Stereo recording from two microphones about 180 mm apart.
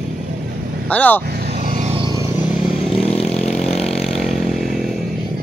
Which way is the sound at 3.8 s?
Centre (ahead or behind).